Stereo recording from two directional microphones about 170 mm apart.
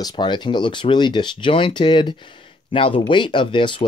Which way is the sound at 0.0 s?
25° left (ahead or behind).